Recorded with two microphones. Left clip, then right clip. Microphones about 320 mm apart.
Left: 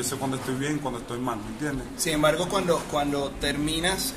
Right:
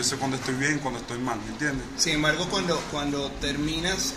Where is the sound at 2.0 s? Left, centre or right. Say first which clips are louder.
Left 2 dB; left.